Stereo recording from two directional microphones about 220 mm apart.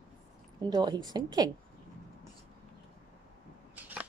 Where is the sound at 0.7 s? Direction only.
20° right (ahead or behind).